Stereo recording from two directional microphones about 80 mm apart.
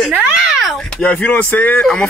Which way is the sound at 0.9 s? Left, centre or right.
Left.